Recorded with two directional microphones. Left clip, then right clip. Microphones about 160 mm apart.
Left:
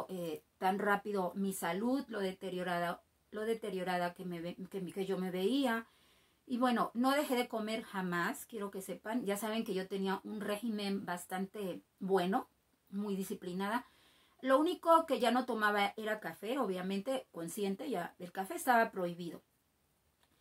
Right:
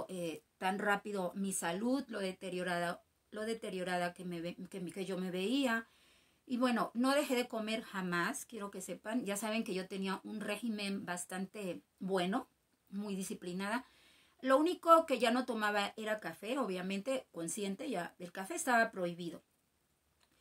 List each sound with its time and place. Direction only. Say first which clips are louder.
0.0 s speech: left 1 dB; 15° right (ahead or behind)